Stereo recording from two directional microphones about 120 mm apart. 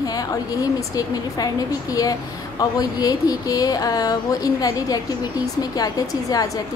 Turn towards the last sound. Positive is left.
turn(degrees=30)  # may be behind; listen again after turning